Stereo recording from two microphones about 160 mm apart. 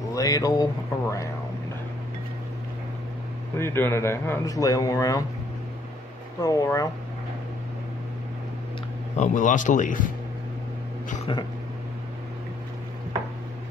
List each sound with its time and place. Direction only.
0.1 s speech: 20° left (ahead or behind)
3.5 s a man's voice: 15° left (ahead or behind)
6.4 s a man's voice: 20° left (ahead or behind)
9.1 s a man's voice: 50° left (ahead or behind)